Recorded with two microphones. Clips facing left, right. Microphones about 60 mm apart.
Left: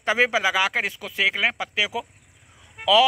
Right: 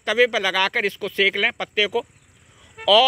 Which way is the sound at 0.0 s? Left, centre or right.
Left.